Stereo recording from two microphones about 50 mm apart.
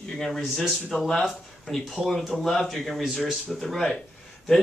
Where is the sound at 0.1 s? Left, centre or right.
Centre.